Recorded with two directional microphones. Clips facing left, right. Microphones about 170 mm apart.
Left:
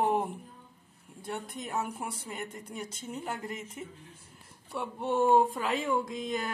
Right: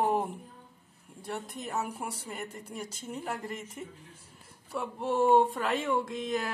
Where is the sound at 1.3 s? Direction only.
Centre (ahead or behind).